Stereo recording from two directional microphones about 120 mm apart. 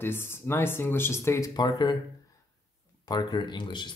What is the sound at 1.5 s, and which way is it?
Speech, 35° left (ahead or behind).